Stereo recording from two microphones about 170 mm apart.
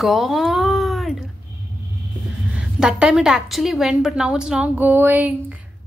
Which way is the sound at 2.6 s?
5° right (ahead or behind).